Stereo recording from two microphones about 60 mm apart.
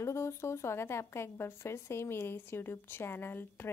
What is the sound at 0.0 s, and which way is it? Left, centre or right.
Speech, left.